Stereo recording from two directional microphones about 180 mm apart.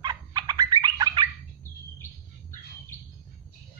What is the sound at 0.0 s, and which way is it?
Bird, 25° right (ahead or behind).